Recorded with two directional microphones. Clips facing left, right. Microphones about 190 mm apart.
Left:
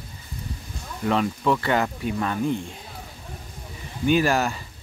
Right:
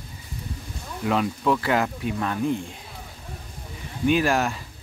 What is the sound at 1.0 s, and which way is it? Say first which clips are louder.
Speech: left 1 dB; centre (ahead or behind).